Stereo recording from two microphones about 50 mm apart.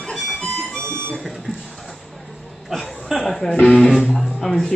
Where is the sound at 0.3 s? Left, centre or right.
Left.